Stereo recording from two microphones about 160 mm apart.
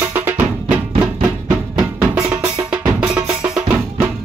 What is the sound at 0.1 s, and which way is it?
Music, 15° right (ahead or behind).